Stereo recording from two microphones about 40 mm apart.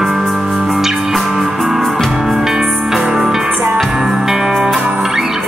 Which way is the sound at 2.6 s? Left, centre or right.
Right.